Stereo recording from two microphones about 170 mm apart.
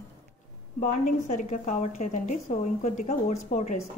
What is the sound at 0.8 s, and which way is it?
A woman's voice, 45° left (ahead or behind).